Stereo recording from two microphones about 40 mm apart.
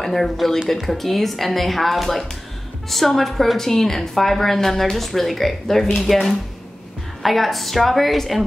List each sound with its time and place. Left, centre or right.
0.0 s a woman's voice: centre
7.2 s a woman's voice: centre